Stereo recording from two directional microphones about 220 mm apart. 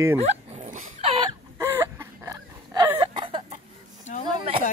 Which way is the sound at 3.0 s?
25° right (ahead or behind).